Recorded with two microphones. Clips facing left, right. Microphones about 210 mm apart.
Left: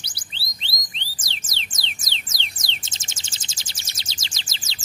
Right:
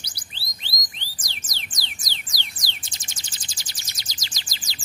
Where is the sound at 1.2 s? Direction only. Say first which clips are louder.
Even; 25° left (ahead or behind).